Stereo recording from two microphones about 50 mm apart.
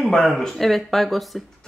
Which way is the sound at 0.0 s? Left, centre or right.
Centre.